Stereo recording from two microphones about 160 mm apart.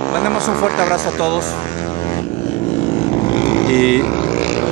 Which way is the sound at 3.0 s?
35° left (ahead or behind).